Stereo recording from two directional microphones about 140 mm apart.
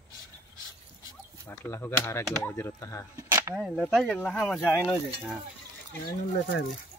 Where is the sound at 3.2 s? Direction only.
20° right (ahead or behind).